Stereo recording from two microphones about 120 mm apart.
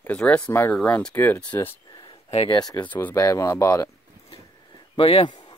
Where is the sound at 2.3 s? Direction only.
55° left (ahead or behind).